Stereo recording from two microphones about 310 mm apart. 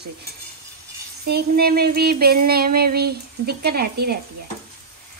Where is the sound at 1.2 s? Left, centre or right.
Right.